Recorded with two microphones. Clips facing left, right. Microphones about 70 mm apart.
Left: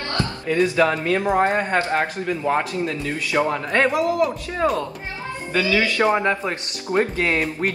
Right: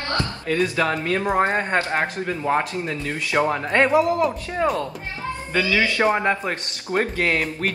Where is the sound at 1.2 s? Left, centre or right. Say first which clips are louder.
Left 1 dB; centre.